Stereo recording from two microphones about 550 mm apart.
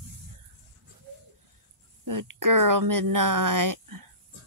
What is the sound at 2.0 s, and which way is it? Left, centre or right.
Speech, right.